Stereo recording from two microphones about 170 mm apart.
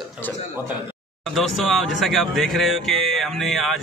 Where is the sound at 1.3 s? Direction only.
Centre (ahead or behind).